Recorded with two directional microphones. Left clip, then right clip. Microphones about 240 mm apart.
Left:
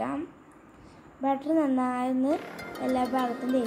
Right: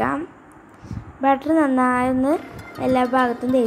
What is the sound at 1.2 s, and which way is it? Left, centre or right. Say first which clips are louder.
A woman's voice: right 9 dB; centre.